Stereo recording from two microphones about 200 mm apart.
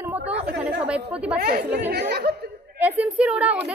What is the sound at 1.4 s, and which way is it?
Speech, 55° right (ahead or behind).